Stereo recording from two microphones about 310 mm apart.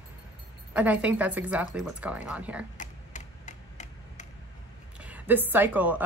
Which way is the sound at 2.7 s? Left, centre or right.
Left.